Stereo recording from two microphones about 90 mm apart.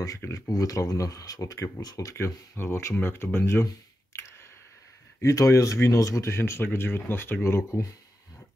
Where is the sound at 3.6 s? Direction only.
35° left (ahead or behind).